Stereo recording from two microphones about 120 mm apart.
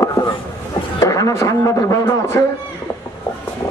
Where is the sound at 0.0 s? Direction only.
25° left (ahead or behind).